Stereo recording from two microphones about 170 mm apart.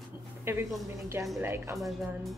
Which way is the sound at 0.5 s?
15° right (ahead or behind).